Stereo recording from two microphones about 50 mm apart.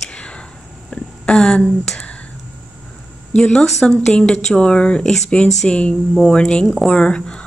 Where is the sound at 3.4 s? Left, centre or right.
Centre.